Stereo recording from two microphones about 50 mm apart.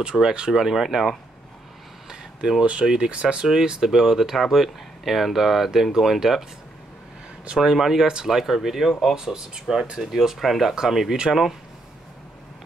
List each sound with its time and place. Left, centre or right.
0.2 s speech: centre
0.5 s speech: centre
2.6 s speech: centre
7.5 s speech: centre
8.1 s speech: centre
8.4 s speech: centre